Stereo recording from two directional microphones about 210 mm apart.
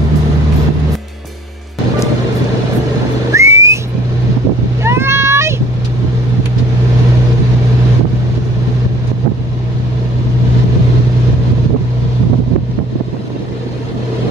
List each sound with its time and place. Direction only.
3.3 s whistling: 15° right (ahead or behind)
4.8 s vehicle: 10° right (ahead or behind)